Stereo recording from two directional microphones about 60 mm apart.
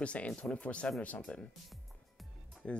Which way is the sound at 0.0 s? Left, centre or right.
Centre.